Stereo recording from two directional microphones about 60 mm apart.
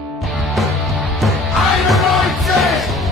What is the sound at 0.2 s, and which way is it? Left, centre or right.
Music, centre.